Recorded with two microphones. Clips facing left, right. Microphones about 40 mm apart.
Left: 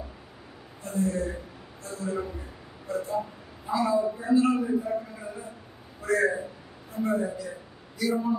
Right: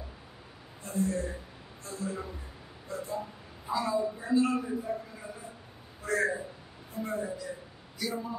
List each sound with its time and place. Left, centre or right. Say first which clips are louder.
0.8 s speech: left 3 dB; centre
6.0 s a man's voice: left 5 dB; centre